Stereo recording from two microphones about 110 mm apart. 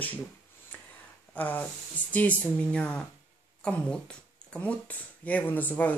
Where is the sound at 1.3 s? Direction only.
15° left (ahead or behind).